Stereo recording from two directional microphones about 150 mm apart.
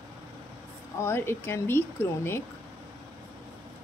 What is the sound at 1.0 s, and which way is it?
Speech, 15° left (ahead or behind).